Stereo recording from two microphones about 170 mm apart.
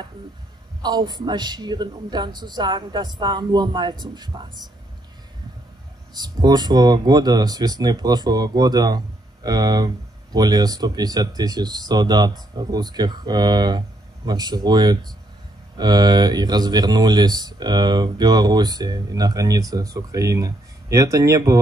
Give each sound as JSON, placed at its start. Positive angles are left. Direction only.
{"t": 0.8, "sound": "speech", "side_deg": -25}
{"t": 6.1, "sound": "speech", "side_deg": -25}